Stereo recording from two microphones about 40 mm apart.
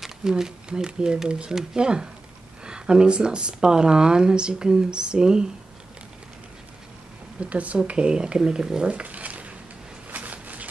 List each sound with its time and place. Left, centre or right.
0.2 s speech: centre
1.5 s speech: centre
1.8 s speech: right
7.3 s speech: right
8.9 s a sound: right